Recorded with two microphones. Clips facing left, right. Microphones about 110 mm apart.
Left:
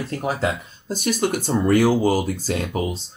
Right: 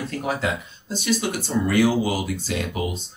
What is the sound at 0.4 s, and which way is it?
Speech, 45° left (ahead or behind).